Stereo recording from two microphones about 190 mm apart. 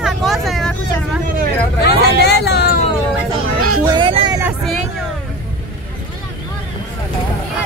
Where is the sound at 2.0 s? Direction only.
60° left (ahead or behind).